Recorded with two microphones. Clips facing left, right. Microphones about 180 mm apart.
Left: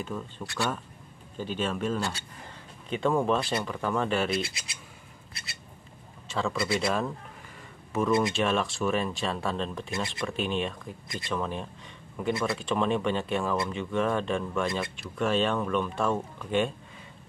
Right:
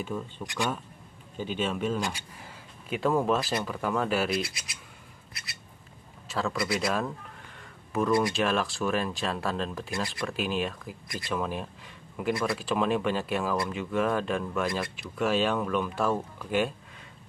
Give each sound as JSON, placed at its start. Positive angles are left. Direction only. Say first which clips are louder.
{"t": 0.0, "sound": "speech", "louder": "right 1 dB", "side_deg": -10}
{"t": 1.4, "sound": "speech", "louder": "even", "side_deg": -5}
{"t": 2.0, "sound": "speech", "louder": "even", "side_deg": -15}
{"t": 4.3, "sound": "speech", "louder": "even", "side_deg": 25}
{"t": 5.3, "sound": "a sound", "louder": "left 1 dB", "side_deg": 25}
{"t": 6.2, "sound": "a sound", "louder": "even", "side_deg": 0}
{"t": 6.7, "sound": "speech", "louder": "left 1 dB", "side_deg": 0}